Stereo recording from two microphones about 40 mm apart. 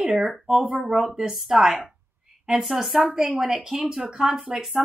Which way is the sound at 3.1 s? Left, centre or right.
Right.